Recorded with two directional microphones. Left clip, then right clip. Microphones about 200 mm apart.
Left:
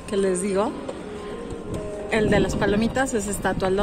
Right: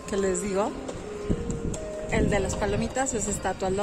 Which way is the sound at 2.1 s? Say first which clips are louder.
Left 5 dB; centre (ahead or behind).